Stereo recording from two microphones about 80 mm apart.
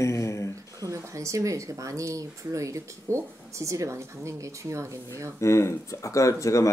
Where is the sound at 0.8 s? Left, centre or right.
Right.